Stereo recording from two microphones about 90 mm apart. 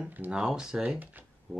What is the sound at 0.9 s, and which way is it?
Speech, 20° right (ahead or behind).